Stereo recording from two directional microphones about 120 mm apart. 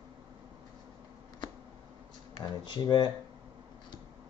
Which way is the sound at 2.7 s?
40° left (ahead or behind).